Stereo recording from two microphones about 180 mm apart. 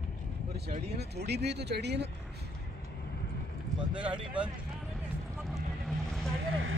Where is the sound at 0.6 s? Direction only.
60° right (ahead or behind).